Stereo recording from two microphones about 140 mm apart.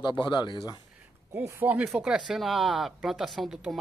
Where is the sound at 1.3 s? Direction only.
15° right (ahead or behind).